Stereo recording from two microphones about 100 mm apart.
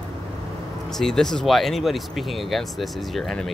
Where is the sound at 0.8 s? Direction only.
5° left (ahead or behind).